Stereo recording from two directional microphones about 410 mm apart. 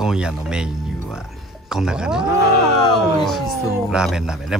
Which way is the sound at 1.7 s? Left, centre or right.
Centre.